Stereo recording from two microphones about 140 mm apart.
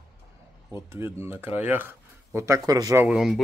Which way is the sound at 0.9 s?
20° right (ahead or behind).